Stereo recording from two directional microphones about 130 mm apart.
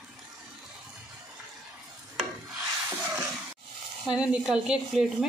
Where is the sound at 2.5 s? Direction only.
15° right (ahead or behind).